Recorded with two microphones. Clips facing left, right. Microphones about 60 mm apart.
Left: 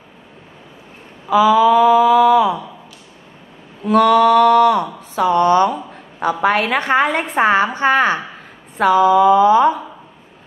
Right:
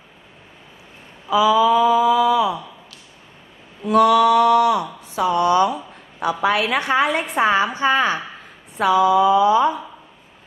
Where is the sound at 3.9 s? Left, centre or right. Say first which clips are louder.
Left 2 dB; left.